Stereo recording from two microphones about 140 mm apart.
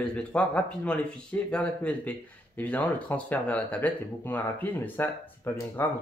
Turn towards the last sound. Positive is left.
turn(degrees=15)  # may be behind; listen again after turning